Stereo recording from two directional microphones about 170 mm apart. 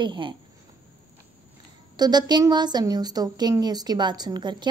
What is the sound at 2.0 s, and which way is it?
A woman's voice, 25° right (ahead or behind).